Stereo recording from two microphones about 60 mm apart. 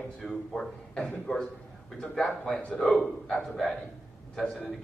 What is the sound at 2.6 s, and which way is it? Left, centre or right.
Speech, left.